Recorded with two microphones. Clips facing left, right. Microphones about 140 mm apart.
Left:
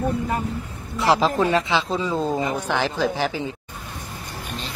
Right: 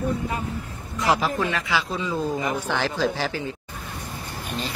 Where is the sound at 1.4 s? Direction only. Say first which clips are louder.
Left 5 dB; 25° left (ahead or behind).